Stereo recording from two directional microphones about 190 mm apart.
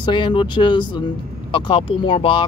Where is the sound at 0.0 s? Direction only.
25° left (ahead or behind).